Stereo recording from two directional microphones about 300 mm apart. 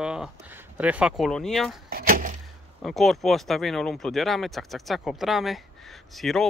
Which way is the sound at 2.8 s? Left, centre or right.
Centre.